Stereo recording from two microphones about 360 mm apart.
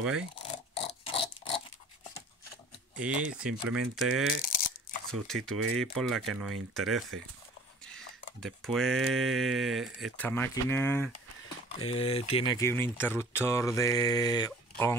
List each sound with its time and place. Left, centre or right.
0.0 s speech: centre
0.4 s a sound: centre
3.0 s speech: centre
8.4 s speech: centre